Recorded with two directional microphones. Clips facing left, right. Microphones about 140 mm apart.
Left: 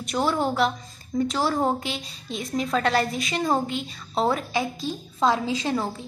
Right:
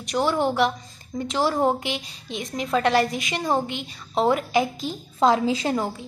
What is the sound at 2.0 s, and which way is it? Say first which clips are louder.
A woman's voice: right 1 dB; 15° right (ahead or behind).